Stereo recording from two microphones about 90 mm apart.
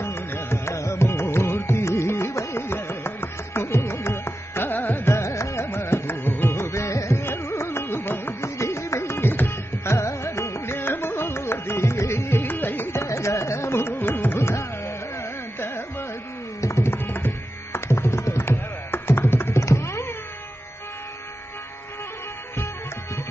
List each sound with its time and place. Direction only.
0.0 s music: 25° left (ahead or behind)
16.6 s tabla: 30° left (ahead or behind)
17.7 s music: 25° left (ahead or behind)